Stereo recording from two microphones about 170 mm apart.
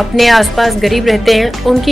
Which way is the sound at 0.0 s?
Centre (ahead or behind).